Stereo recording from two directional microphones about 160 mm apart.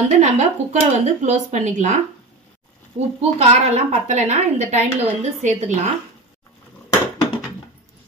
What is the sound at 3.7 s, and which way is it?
A woman's voice, 45° right (ahead or behind).